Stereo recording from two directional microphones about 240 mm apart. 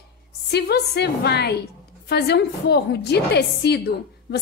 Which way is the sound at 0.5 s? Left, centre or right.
Left.